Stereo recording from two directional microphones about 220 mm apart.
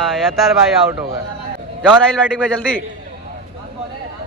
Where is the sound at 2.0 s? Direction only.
5° left (ahead or behind).